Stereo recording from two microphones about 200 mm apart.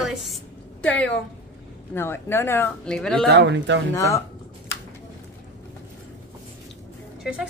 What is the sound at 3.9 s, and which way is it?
Speech, 15° left (ahead or behind).